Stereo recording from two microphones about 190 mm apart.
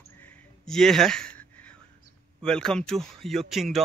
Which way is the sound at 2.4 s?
5° left (ahead or behind).